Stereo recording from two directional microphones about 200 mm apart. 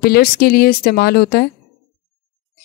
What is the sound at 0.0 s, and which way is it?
A woman's voice, 50° left (ahead or behind).